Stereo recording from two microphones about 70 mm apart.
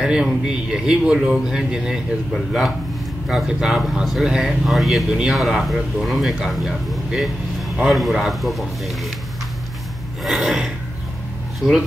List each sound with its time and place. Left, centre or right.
0.0 s a man's voice: centre
5.4 s speech: centre
10.2 s filing: centre